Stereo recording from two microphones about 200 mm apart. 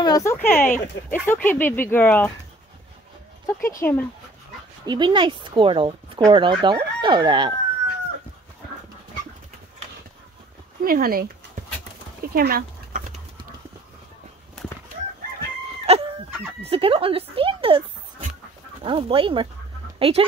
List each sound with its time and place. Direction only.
0.0 s speech: 15° left (ahead or behind)
3.4 s speech: 10° left (ahead or behind)
4.8 s speech: 20° right (ahead or behind)
10.8 s speech: 45° right (ahead or behind)
12.4 s dog: 50° right (ahead or behind)
15.9 s chicken: 30° right (ahead or behind)
16.6 s speech: 30° right (ahead or behind)
18.9 s speech: 25° right (ahead or behind)